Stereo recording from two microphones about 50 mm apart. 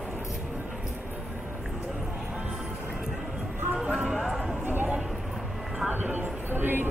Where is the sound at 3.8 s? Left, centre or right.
Right.